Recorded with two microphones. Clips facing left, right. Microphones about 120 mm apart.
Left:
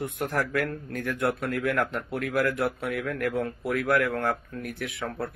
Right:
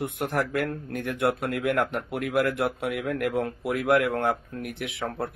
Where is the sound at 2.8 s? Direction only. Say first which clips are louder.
Right 1 dB; 30° right (ahead or behind).